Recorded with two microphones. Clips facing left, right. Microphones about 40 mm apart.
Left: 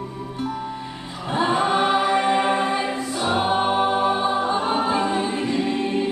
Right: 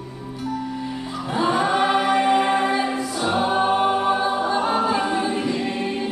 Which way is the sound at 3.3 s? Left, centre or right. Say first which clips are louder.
Right 1 dB; centre.